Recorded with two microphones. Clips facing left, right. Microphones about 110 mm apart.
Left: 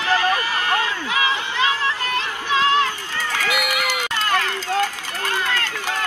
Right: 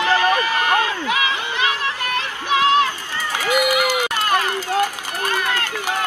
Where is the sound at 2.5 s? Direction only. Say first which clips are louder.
Right 2 dB; 20° right (ahead or behind).